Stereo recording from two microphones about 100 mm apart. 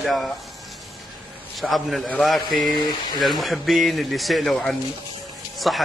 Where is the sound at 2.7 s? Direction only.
45° left (ahead or behind).